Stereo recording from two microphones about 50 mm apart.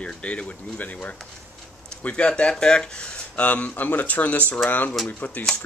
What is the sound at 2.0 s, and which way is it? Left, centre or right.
Speech, centre.